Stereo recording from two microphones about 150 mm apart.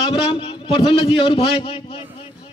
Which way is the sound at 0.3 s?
35° left (ahead or behind).